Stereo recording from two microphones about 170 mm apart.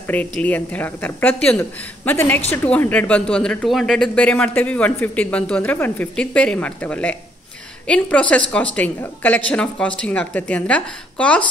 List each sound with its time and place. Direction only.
0.0 s speech: 10° left (ahead or behind)